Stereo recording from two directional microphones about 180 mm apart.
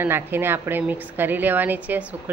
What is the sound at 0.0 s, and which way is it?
Speech, 10° right (ahead or behind).